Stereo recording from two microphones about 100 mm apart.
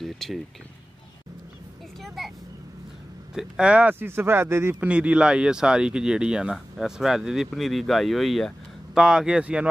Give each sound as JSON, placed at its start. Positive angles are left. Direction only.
{"t": 0.0, "sound": "speech", "side_deg": 0}
{"t": 2.0, "sound": "speech", "side_deg": 0}
{"t": 3.3, "sound": "speech", "side_deg": -10}
{"t": 4.8, "sound": "speech", "side_deg": -10}